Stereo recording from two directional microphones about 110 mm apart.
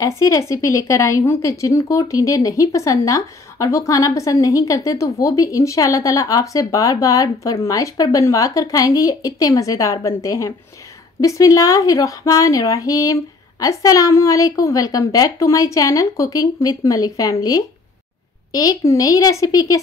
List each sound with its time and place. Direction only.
0.0 s a woman's voice: 30° left (ahead or behind)